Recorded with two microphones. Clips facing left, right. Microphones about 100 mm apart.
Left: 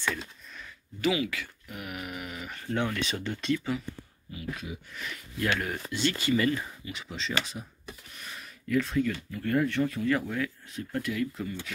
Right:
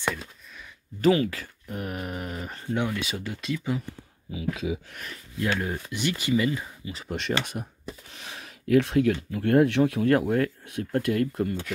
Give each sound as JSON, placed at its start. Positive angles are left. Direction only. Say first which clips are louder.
{"t": 1.0, "sound": "speech", "louder": "right 6 dB", "side_deg": -40}
{"t": 2.6, "sound": "speech", "louder": "right 1 dB", "side_deg": -15}
{"t": 5.4, "sound": "speech", "louder": "right 2 dB", "side_deg": -20}
{"t": 7.1, "sound": "speech", "louder": "right 7 dB", "side_deg": -60}
{"t": 7.5, "sound": "speech", "louder": "right 6 dB", "side_deg": -35}
{"t": 8.1, "sound": "speech", "louder": "right 3 dB", "side_deg": -90}